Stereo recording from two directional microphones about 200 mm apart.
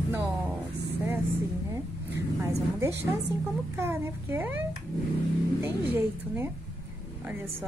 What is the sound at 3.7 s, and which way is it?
Speech, 10° right (ahead or behind).